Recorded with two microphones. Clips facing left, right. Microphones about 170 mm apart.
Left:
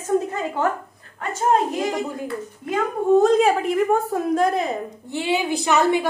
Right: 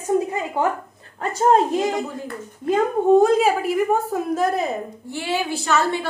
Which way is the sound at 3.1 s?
10° right (ahead or behind).